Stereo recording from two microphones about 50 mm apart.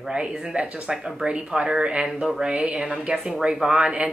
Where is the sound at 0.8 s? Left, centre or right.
Centre.